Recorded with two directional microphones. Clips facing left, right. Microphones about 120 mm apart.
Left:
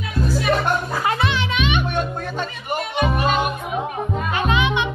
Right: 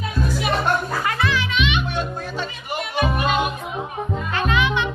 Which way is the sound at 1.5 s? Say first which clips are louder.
Left 1 dB; 45° left (ahead or behind).